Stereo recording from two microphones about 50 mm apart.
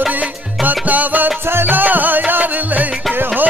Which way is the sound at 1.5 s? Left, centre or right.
Right.